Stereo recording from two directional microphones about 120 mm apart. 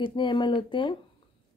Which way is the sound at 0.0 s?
40° left (ahead or behind).